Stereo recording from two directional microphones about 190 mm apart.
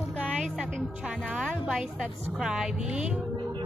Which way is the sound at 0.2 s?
5° right (ahead or behind).